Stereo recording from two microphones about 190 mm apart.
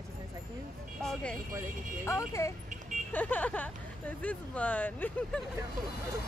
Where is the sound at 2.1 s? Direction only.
15° left (ahead or behind).